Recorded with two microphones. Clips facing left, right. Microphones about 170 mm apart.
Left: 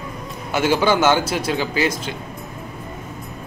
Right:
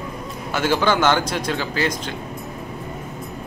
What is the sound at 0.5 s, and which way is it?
A man's voice, 10° left (ahead or behind).